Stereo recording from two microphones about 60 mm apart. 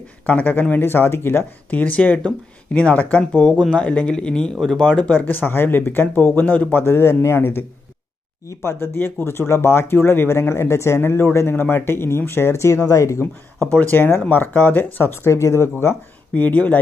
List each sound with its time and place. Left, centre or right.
0.3 s speech: left
1.7 s speech: left
3.3 s speech: centre
4.8 s speech: left
6.8 s speech: left
13.7 s speech: left
16.3 s speech: left